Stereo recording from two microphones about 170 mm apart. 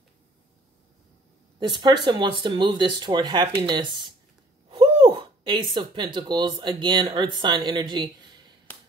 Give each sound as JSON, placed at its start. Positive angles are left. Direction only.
{"t": 1.6, "sound": "speech", "side_deg": -25}